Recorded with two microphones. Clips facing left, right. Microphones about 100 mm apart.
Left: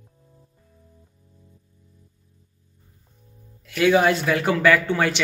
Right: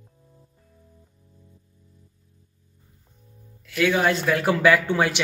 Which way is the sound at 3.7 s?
15° left (ahead or behind).